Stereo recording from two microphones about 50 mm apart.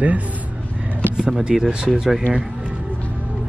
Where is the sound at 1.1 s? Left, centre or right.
Centre.